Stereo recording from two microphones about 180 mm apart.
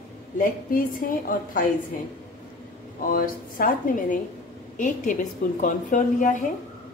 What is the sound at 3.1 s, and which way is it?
A woman's voice, 50° left (ahead or behind).